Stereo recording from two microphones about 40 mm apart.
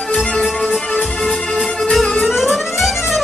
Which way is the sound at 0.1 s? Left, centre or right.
Left.